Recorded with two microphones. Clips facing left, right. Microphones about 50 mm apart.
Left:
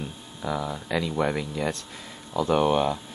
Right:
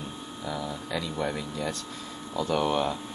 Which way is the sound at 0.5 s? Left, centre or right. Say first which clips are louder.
Left 5 dB; left.